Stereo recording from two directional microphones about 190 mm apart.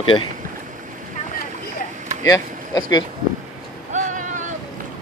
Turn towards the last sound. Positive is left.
turn(degrees=-40)  # may be behind; listen again after turning